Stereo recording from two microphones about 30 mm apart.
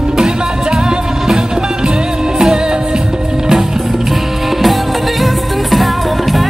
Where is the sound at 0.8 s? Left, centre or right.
Right.